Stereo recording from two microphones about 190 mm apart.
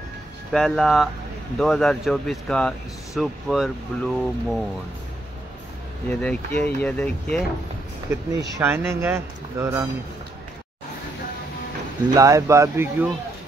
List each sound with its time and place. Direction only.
0.5 s speech: centre (ahead or behind)
6.0 s speech: 5° left (ahead or behind)
8.5 s speech: 10° right (ahead or behind)
12.1 s speech: 15° right (ahead or behind)